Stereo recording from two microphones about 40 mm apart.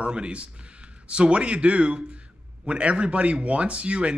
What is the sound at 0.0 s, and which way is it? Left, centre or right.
A man's voice, right.